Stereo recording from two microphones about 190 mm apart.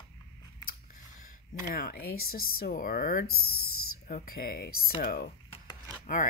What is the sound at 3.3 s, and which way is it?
Speech, 90° left.